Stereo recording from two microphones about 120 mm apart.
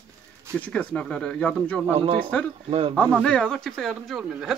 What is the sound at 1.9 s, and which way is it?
Speech, 55° right (ahead or behind).